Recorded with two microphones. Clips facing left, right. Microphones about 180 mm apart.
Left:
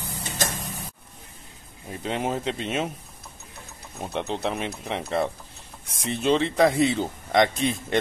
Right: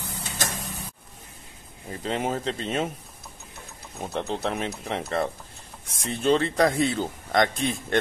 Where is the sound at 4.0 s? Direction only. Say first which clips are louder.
Even; centre (ahead or behind).